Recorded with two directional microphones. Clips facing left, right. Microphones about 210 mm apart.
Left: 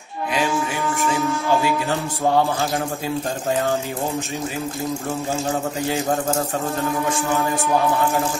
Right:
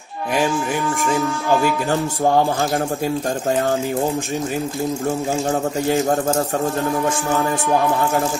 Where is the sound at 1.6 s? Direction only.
45° right (ahead or behind).